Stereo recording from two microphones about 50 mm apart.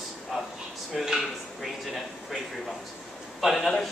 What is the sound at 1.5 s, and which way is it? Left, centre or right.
Speech, centre.